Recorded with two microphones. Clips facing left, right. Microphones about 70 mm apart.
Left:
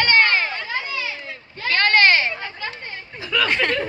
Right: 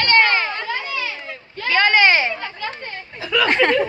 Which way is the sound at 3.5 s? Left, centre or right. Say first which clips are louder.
Right 7 dB; right.